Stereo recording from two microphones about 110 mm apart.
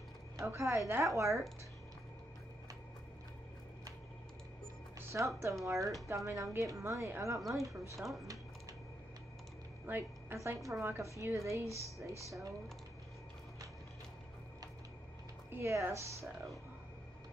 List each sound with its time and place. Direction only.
0.4 s speech: 25° right (ahead or behind)
5.1 s speech: 25° right (ahead or behind)
7.3 s a woman's voice: centre (ahead or behind)
7.6 s speech: 30° right (ahead or behind)
9.8 s a woman's voice: 20° right (ahead or behind)
15.5 s speech: 25° right (ahead or behind)